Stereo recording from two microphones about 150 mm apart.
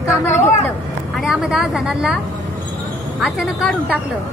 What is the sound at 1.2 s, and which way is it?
Speech, 5° right (ahead or behind).